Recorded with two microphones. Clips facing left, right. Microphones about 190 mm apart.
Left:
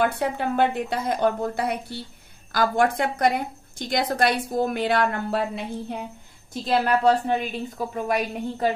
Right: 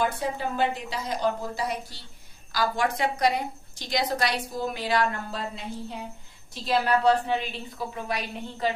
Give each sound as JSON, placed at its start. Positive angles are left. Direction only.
{"t": 0.0, "sound": "a woman's voice", "side_deg": 65}
{"t": 7.1, "sound": "a woman's voice", "side_deg": 45}